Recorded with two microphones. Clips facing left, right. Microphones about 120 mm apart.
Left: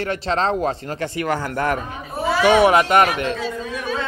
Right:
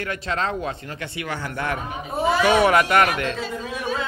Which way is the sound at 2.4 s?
20° left (ahead or behind).